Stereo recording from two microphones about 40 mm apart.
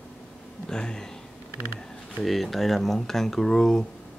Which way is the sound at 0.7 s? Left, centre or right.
Centre.